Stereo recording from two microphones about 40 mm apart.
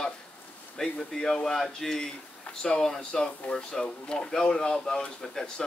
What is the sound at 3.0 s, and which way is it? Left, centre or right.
Speech, left.